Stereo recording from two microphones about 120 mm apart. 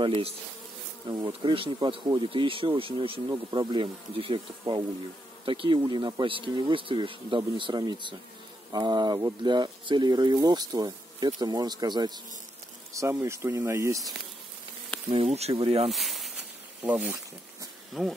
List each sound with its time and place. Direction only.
0.0 s speech: 45° right (ahead or behind); by 14.1 s 25° right (ahead or behind)
15.0 s speech: 55° right (ahead or behind)
15.9 s speech: centre (ahead or behind)
16.8 s speech: 20° right (ahead or behind)
18.0 s insect: 5° left (ahead or behind)